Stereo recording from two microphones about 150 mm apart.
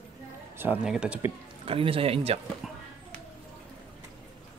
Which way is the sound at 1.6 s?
40° right (ahead or behind).